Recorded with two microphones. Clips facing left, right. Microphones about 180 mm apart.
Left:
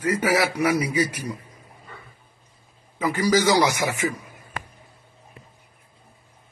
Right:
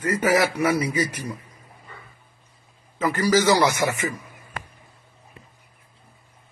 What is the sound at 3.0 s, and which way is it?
A man's voice, 10° left (ahead or behind).